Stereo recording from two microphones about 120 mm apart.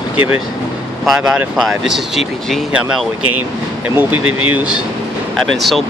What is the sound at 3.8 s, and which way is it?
Speech, 15° right (ahead or behind).